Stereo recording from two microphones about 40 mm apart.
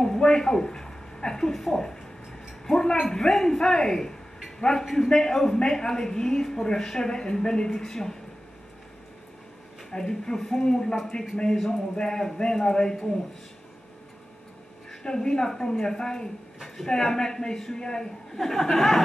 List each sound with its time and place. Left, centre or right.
0.0 s a sound: centre
3.1 s a woman's voice: centre
9.8 s a woman's voice: centre
14.9 s a woman's voice: centre